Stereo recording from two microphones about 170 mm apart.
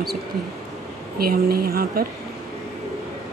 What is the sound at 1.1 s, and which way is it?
Speech, 60° right (ahead or behind).